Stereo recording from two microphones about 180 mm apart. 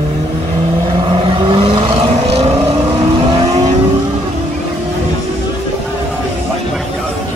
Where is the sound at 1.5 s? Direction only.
30° right (ahead or behind).